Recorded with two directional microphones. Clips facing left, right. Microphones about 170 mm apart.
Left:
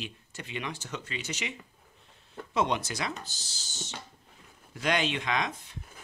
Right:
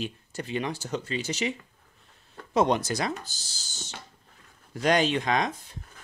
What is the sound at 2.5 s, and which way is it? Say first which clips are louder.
Speech: right 5 dB; 40° right (ahead or behind).